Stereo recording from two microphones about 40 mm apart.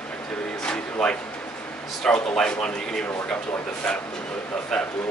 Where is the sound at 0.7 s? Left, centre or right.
Left.